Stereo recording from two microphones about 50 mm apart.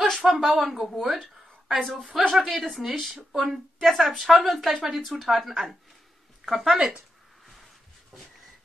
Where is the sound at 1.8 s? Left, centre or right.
Centre.